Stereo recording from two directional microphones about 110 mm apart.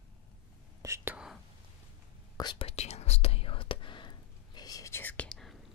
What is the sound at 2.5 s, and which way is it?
Whispering, 65° left (ahead or behind).